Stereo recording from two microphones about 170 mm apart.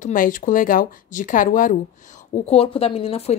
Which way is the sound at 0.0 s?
50° left (ahead or behind).